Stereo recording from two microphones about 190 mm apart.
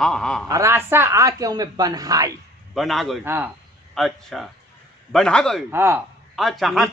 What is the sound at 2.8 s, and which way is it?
Speech, centre (ahead or behind).